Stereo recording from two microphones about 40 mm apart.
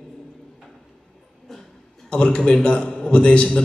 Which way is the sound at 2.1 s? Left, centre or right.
Left.